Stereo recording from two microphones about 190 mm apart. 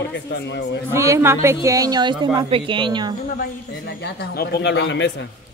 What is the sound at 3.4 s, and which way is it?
A man's voice, 60° left (ahead or behind).